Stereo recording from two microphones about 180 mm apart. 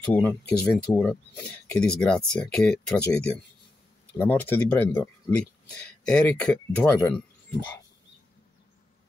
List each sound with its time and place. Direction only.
0.0 s speech: 10° left (ahead or behind)